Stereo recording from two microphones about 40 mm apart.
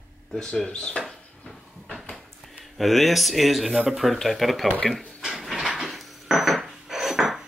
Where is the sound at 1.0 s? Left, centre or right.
Centre.